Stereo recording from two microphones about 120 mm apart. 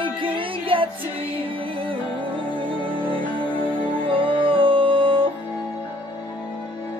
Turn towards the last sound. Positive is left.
turn(degrees=-45)  # may be behind; listen again after turning